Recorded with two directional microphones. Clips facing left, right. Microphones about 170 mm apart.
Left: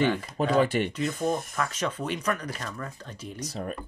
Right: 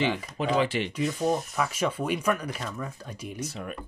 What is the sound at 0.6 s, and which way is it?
Speech, 50° left (ahead or behind).